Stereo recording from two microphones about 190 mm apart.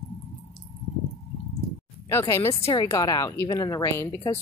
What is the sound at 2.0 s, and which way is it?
A woman's voice, 15° left (ahead or behind).